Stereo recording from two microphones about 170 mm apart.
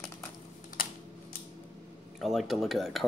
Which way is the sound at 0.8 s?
55° left (ahead or behind).